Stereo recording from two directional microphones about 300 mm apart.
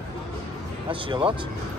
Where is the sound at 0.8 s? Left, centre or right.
Centre.